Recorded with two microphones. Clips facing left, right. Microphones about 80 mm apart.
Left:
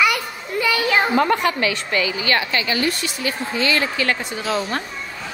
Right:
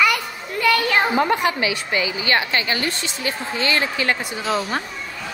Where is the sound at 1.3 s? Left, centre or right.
Centre; by 3.8 s right.